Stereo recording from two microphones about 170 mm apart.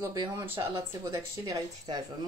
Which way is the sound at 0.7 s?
15° right (ahead or behind).